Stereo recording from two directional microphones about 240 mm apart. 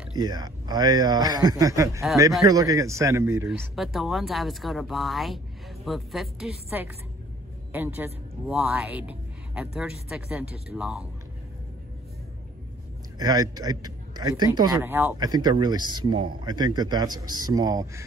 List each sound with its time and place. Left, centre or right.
0.2 s a man's voice: centre
13.2 s a man's voice: centre